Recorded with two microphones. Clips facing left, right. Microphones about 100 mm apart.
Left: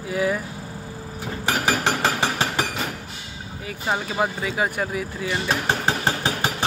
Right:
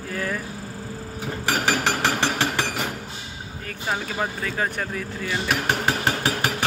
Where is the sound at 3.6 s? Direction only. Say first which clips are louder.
Left 2 dB; 15° left (ahead or behind).